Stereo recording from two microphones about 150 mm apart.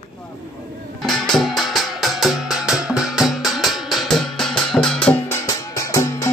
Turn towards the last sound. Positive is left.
turn(degrees=20)  # may be behind; listen again after turning